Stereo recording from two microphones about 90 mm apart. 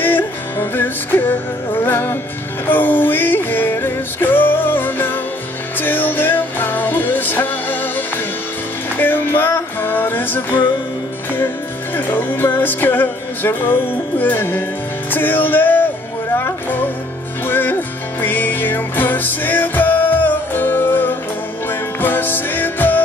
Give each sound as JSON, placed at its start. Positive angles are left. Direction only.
{"t": 0.0, "sound": "music", "side_deg": 25}
{"t": 8.9, "sound": "music", "side_deg": 25}
{"t": 12.1, "sound": "music", "side_deg": 25}